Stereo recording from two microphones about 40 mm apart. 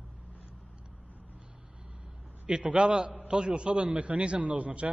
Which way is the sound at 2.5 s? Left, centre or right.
Right.